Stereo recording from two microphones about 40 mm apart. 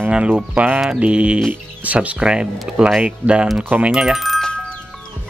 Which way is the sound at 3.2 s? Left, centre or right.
Right.